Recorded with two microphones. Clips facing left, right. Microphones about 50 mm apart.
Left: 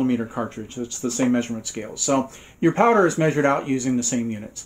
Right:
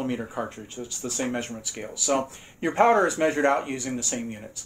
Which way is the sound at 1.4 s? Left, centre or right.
Centre.